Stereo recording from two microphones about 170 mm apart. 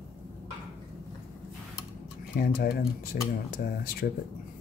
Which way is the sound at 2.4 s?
60° left (ahead or behind).